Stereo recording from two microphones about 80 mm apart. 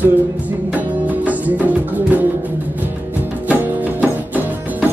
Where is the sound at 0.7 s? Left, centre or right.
Centre.